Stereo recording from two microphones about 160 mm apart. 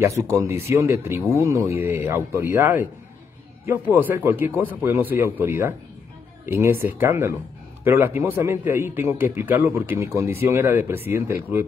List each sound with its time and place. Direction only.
0.0 s a man's voice: 20° right (ahead or behind)